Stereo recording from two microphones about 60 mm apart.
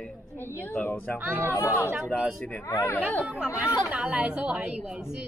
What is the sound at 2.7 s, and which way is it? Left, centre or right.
Speech, left.